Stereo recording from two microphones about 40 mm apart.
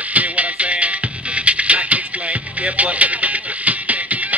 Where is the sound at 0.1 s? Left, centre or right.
Right.